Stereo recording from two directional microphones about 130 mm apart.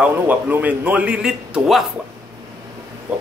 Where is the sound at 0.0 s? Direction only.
15° right (ahead or behind).